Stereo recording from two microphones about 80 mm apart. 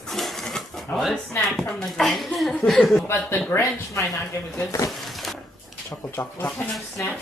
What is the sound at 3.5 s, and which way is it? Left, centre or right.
Speech, left.